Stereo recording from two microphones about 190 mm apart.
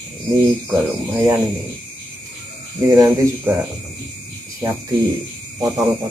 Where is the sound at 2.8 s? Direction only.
20° right (ahead or behind).